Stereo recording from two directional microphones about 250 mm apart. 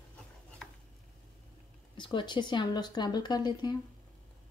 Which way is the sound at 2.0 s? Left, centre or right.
Centre.